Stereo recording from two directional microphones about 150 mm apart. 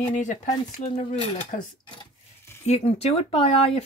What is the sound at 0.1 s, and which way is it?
Speech, 55° left (ahead or behind).